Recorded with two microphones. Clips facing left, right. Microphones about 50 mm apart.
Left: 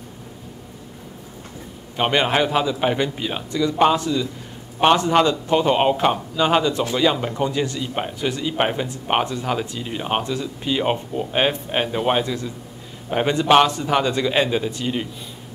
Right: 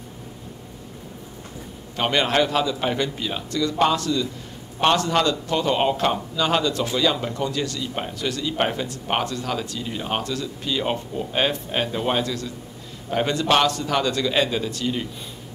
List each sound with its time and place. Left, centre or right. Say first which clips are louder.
2.0 s speech: left 2 dB; centre